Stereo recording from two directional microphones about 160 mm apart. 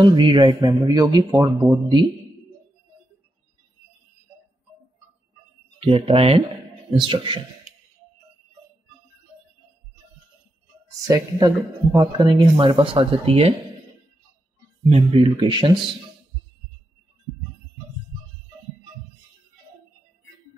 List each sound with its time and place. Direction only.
0.0 s speech: 30° right (ahead or behind)
5.8 s speech: 35° right (ahead or behind)
11.1 s speech: 20° right (ahead or behind); by 13.6 s 35° right (ahead or behind)
14.9 s speech: 35° right (ahead or behind)